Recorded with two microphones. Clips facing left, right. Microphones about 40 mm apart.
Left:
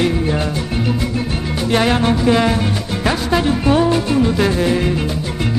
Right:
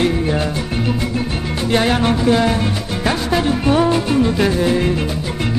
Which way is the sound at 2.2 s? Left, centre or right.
Centre.